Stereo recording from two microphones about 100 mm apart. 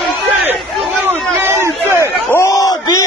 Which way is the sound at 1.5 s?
25° right (ahead or behind).